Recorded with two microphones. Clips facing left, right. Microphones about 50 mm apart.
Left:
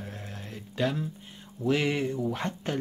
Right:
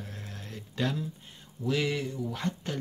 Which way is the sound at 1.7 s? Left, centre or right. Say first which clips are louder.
Left 3 dB; left.